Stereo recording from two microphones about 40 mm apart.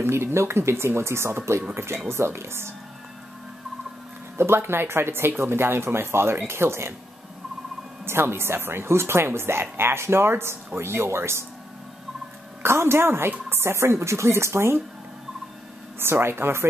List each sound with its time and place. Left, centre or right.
0.0 s speech: right
4.4 s speech: right
5.4 s speech: right
6.4 s speech: right
8.0 s speech: right
12.6 s speech: right
16.0 s speech: right